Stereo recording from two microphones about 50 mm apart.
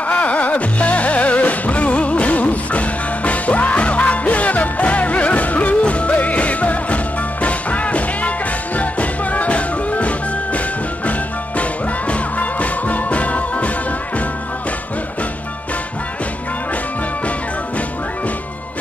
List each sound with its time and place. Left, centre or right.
0.1 s music: left
12.1 s music: left